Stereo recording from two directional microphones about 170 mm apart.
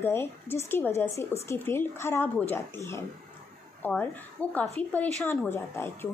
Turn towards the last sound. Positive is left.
turn(degrees=15)  # may be behind; listen again after turning